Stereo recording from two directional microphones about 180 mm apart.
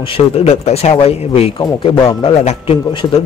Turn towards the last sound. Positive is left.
turn(degrees=35)  # may be behind; listen again after turning